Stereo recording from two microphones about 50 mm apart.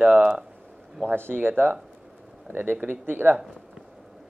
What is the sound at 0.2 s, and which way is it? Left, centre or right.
Speech, centre.